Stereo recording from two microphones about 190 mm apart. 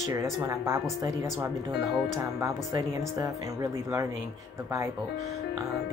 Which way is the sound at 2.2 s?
15° right (ahead or behind).